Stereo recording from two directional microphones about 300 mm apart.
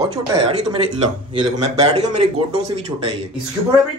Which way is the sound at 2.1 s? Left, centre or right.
Right.